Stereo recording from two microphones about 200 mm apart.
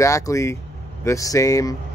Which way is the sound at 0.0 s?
15° left (ahead or behind).